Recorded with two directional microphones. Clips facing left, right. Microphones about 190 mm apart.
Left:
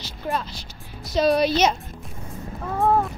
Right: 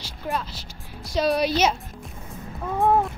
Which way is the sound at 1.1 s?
10° right (ahead or behind).